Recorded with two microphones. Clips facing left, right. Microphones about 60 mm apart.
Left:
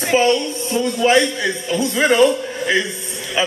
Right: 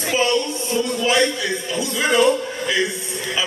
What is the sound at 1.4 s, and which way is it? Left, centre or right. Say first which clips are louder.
Speech: left 4 dB; left.